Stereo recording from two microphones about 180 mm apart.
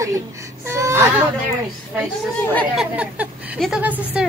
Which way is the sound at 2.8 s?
10° right (ahead or behind).